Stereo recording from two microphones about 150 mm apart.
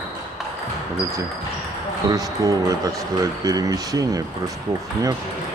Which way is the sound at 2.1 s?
25° right (ahead or behind).